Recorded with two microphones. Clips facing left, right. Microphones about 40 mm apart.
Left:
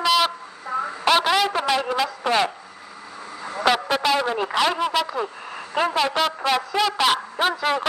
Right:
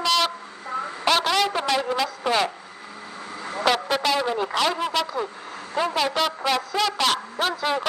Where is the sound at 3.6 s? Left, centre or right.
Centre.